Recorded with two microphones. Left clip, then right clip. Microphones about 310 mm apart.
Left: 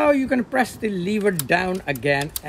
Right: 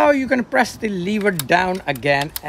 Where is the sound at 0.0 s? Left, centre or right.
Centre.